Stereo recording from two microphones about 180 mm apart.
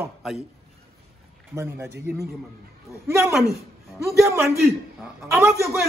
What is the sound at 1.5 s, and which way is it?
Speech, 15° right (ahead or behind).